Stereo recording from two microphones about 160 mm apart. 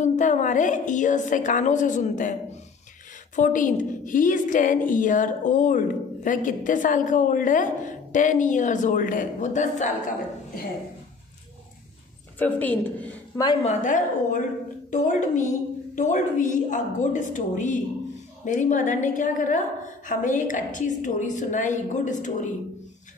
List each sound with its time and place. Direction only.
0.0 s a woman's voice: 50° left (ahead or behind)
3.3 s a woman's voice: 55° left (ahead or behind)
12.4 s a woman's voice: 10° left (ahead or behind)
13.7 s a woman's voice: 50° left (ahead or behind)